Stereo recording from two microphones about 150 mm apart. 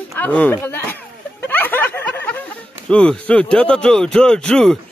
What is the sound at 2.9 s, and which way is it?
Speech, 5° left (ahead or behind).